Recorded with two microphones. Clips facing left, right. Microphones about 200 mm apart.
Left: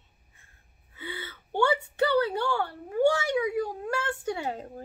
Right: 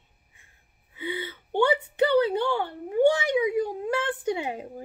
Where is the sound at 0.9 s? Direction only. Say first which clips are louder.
Right 7 dB; 15° right (ahead or behind).